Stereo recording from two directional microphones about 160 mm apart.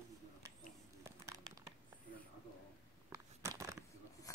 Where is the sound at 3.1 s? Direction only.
20° right (ahead or behind).